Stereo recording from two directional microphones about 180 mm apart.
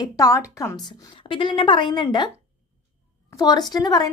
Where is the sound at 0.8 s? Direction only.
25° left (ahead or behind).